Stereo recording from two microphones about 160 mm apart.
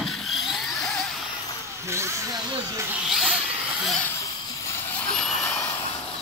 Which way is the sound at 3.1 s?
5° right (ahead or behind).